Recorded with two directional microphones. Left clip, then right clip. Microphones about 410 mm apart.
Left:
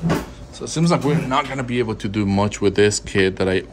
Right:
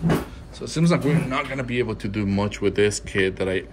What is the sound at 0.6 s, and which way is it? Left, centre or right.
Speech, centre.